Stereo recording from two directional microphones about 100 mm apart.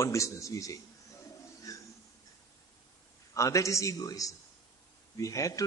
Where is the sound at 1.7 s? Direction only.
35° left (ahead or behind).